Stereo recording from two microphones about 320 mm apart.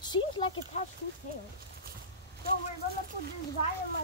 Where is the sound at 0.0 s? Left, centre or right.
Centre.